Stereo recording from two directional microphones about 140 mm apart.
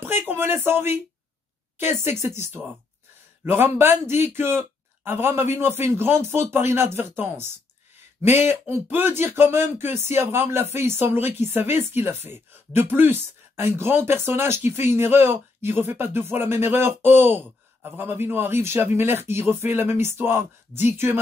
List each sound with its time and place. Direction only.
0.0 s speech: 15° right (ahead or behind)
3.4 s speech: 15° right (ahead or behind)
8.2 s speech: 15° right (ahead or behind)